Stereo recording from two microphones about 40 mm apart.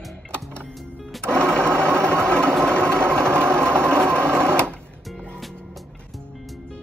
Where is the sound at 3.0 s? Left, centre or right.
Right.